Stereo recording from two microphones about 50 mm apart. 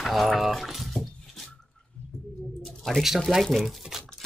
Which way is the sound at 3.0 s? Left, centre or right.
Centre.